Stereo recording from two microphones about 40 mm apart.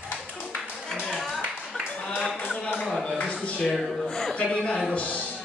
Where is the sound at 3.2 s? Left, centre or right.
Left.